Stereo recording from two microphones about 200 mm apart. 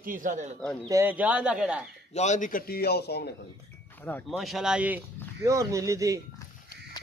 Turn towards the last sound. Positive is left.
turn(degrees=-15)  # may be behind; listen again after turning